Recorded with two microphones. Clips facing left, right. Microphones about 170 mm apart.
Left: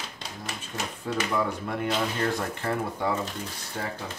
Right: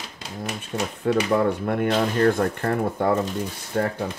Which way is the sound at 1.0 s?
55° right (ahead or behind).